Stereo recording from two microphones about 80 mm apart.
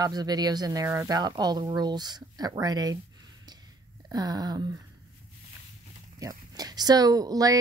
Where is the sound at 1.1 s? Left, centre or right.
Right.